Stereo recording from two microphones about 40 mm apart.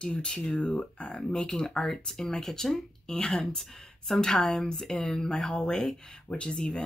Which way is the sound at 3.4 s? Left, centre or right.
Centre.